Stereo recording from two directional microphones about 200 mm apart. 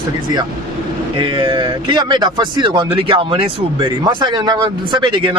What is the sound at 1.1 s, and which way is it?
Speech, 25° right (ahead or behind).